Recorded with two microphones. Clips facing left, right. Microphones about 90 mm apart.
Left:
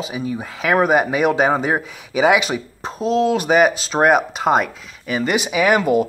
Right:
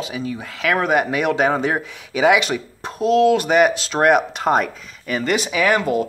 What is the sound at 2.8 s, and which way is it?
Speech, 30° left (ahead or behind).